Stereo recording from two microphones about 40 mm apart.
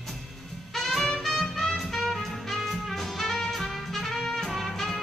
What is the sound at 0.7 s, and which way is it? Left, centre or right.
Music, centre.